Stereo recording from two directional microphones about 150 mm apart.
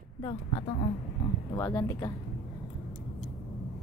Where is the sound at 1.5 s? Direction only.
20° left (ahead or behind).